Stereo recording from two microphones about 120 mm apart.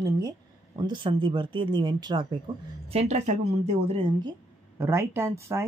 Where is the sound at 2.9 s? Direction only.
60° right (ahead or behind).